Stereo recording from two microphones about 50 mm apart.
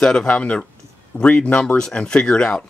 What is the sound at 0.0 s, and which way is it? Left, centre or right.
Speech, centre.